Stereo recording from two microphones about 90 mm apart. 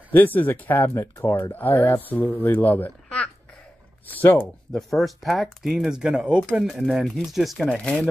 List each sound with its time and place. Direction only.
0.1 s speech: 20° left (ahead or behind)
4.7 s speech: centre (ahead or behind)